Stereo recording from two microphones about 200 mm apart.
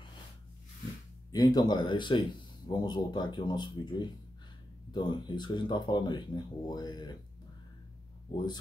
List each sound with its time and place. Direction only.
1.3 s speech: 20° left (ahead or behind)